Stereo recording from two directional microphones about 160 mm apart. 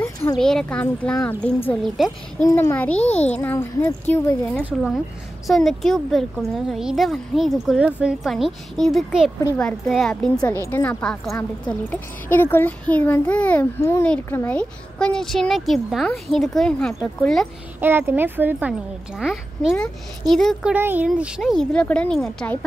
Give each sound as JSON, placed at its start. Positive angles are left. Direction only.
{"t": 0.4, "sound": "speech", "side_deg": 5}
{"t": 2.4, "sound": "speech", "side_deg": 15}
{"t": 3.0, "sound": "a child's voice", "side_deg": 40}
{"t": 3.3, "sound": "speech", "side_deg": 15}
{"t": 4.6, "sound": "speech", "side_deg": -5}
{"t": 17.7, "sound": "speech", "side_deg": -15}
{"t": 20.7, "sound": "speech", "side_deg": -10}